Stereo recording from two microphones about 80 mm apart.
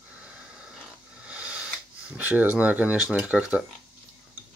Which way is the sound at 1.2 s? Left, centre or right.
Centre.